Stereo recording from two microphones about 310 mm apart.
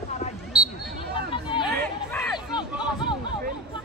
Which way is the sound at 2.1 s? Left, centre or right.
Centre.